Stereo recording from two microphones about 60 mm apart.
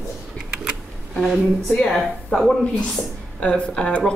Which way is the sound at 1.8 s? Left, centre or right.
Centre.